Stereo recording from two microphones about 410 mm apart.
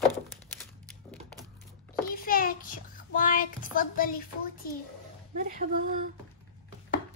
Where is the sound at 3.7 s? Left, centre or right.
Left.